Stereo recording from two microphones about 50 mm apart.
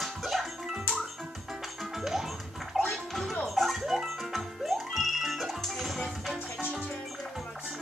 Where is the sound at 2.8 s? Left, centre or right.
Centre.